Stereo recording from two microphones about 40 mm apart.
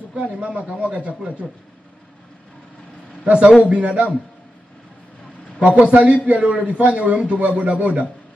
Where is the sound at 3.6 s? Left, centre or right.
Right.